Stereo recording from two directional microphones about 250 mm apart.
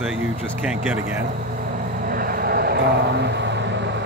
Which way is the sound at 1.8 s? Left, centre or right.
Right.